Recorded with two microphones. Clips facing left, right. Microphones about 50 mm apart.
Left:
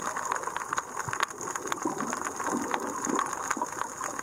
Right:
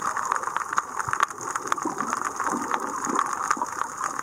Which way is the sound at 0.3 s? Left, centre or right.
Centre.